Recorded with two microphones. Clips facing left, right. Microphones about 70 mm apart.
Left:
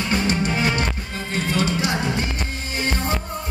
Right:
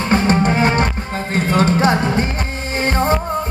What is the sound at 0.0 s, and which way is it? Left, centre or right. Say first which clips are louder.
Music: right 7 dB; right.